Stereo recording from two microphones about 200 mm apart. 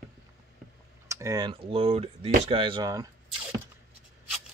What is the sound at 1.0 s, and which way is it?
Speech, 15° right (ahead or behind).